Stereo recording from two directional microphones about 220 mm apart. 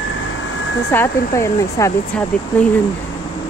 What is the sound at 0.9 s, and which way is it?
Speech, 10° left (ahead or behind).